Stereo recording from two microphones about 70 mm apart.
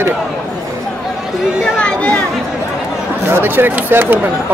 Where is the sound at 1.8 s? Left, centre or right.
Centre.